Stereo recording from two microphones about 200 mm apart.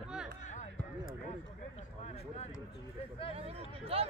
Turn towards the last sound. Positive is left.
turn(degrees=-30)  # may be behind; listen again after turning